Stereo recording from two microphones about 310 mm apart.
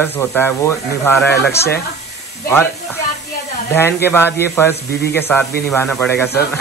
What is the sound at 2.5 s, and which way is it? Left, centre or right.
Speech, centre.